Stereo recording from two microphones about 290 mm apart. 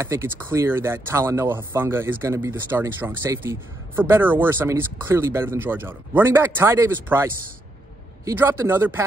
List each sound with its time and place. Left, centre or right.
0.0 s speech: centre
8.3 s speech: centre